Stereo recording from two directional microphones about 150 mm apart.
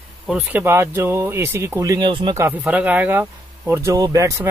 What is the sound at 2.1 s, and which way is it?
Speech, 35° right (ahead or behind).